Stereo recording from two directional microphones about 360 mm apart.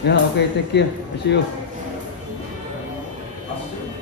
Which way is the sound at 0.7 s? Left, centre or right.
Left.